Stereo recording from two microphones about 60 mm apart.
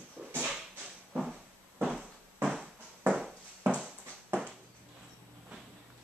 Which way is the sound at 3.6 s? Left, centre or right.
Centre.